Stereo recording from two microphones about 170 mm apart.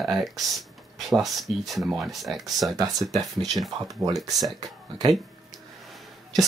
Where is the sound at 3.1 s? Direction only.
20° right (ahead or behind).